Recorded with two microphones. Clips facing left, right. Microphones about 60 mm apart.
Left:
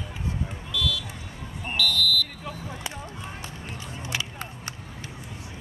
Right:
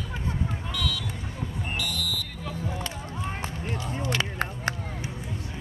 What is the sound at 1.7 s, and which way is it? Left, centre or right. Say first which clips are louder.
Smoke detector: left 9 dB; right.